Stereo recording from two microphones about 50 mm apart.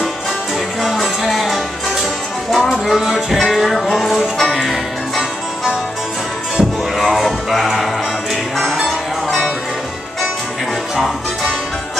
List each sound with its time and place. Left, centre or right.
0.8 s music: centre
6.5 s music: centre